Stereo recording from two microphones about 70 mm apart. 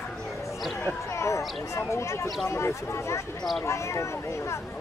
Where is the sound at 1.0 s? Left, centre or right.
Left.